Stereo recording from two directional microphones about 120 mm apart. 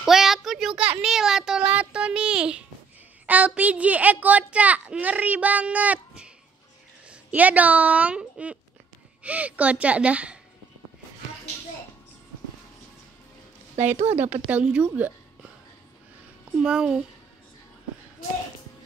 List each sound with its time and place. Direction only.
0.0 s a sound: 5° right (ahead or behind)
3.3 s a woman's voice: 15° right (ahead or behind)
13.7 s speech: 75° right (ahead or behind)
14.5 s a woman's voice: 10° right (ahead or behind)
16.5 s a woman's voice: 5° right (ahead or behind)